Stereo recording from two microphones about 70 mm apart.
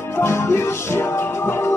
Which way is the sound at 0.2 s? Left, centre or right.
Left.